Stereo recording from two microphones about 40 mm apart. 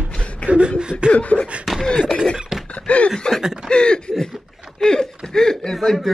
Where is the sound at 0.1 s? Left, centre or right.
Left.